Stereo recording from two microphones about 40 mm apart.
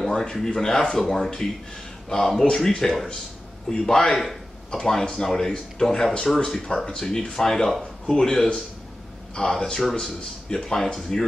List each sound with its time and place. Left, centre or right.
0.1 s speech: centre
4.7 s speech: centre